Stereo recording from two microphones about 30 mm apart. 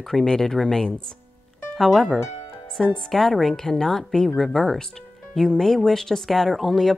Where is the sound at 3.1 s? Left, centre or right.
Centre.